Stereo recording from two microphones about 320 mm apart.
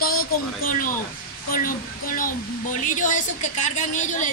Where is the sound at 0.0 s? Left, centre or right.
Left.